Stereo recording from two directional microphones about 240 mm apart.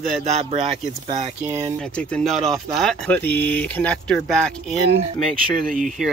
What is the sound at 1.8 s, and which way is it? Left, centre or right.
Speech, centre.